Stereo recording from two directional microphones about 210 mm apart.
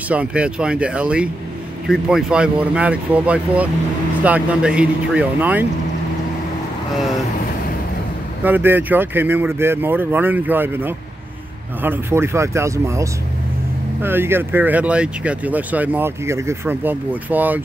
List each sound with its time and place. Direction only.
0.1 s speech: 5° right (ahead or behind)
8.5 s speech: 10° right (ahead or behind)